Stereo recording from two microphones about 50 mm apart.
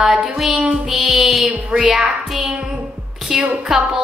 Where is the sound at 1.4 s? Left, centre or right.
Right.